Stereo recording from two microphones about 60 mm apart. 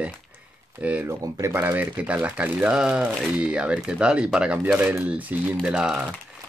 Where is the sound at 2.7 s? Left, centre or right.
Centre.